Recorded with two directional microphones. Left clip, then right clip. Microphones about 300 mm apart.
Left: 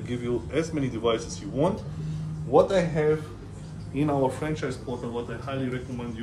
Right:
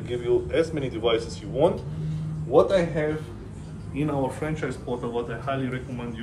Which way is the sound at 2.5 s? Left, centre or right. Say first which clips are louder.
Right 1 dB; left.